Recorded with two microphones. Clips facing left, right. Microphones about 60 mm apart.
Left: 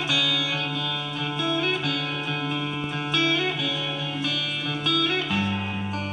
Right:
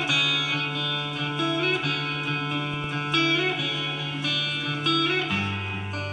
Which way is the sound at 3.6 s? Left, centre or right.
Right.